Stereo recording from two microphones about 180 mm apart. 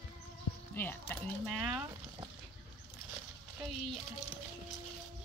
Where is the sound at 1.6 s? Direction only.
5° right (ahead or behind).